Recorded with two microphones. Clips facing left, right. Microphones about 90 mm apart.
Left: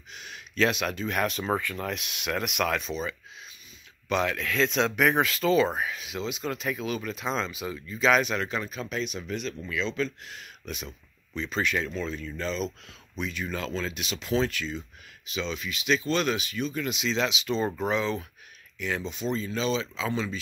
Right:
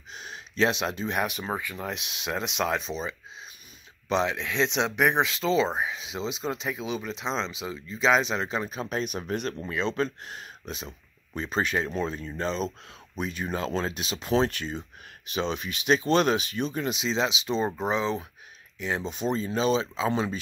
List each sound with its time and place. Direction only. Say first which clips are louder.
0.1 s a sound: right 2 dB; 35° right (ahead or behind)
1.2 s speech: left 3 dB; 10° right (ahead or behind)
5.3 s speech: left 2 dB; centre (ahead or behind)
5.6 s speech: left 1 dB; 20° right (ahead or behind)
19.0 s speech: right 2 dB; 40° right (ahead or behind)